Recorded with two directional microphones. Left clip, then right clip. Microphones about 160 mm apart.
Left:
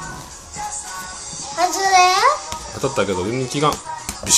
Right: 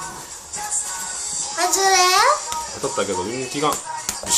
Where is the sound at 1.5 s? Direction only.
15° right (ahead or behind).